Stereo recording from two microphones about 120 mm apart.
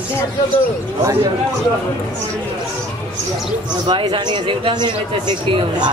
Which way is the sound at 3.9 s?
40° right (ahead or behind).